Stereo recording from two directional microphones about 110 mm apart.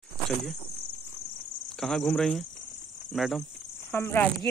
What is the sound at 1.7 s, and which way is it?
Cricket, 5° left (ahead or behind).